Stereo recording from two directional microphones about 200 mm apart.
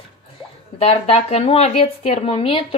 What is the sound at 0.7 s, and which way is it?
Speech, 30° left (ahead or behind).